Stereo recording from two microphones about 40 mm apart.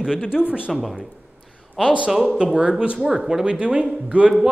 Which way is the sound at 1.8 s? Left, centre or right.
Right.